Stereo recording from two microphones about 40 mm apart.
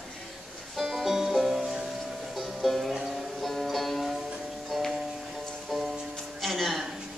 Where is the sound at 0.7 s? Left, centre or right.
Centre.